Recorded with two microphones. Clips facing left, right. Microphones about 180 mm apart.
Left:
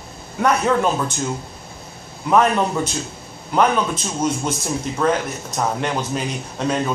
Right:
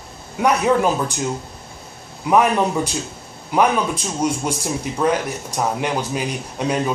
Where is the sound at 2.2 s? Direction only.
10° right (ahead or behind).